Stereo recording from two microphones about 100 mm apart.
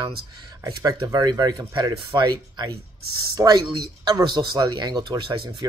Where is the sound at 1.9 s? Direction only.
60° right (ahead or behind).